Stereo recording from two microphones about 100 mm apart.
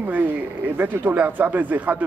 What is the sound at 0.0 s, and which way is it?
Speech, 15° right (ahead or behind).